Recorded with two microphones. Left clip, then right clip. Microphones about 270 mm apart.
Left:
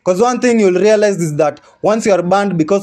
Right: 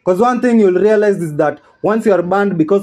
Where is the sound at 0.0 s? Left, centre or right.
Left.